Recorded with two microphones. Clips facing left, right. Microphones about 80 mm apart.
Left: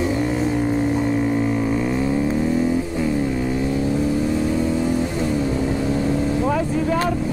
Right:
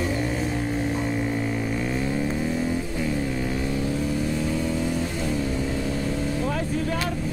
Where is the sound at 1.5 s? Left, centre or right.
Centre.